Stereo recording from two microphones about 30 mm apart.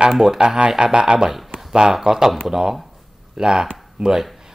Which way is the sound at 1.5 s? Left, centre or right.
Right.